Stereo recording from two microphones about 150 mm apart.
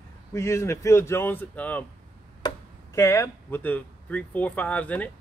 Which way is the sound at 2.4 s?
30° left (ahead or behind).